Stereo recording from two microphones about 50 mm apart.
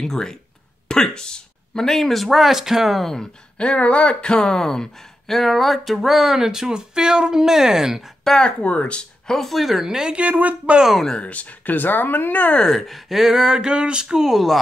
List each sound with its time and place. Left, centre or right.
0.0 s speech: centre
3.0 s speech: centre
3.5 s speech: left; by 8.0 s centre
8.4 s speech: left
9.3 s speech: centre
10.1 s speech: right
11.2 s speech: left
12.5 s speech: centre
12.8 s speech: centre